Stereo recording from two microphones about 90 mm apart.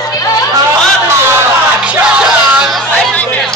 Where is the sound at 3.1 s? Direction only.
15° left (ahead or behind).